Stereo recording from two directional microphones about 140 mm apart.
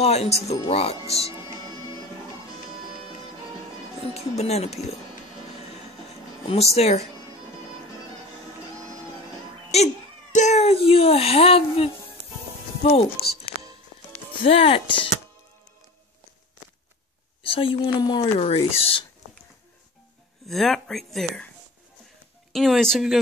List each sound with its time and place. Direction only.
0.0 s speech: 50° left (ahead or behind)
4.0 s speech: 50° left (ahead or behind)
6.4 s speech: 45° left (ahead or behind)
9.7 s speech: 50° left (ahead or behind)
14.4 s speech: 40° left (ahead or behind)
17.4 s speech: 40° left (ahead or behind)
18.4 s speech: 45° left (ahead or behind)
20.4 s speech: centre (ahead or behind)
22.5 s speech: centre (ahead or behind)